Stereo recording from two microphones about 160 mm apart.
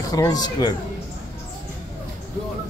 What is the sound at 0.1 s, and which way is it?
Speech, 25° left (ahead or behind).